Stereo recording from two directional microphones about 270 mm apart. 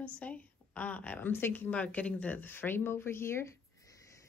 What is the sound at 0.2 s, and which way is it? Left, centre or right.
A woman's voice, centre.